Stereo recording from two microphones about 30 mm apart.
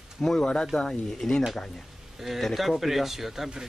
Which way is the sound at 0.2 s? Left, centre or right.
Centre.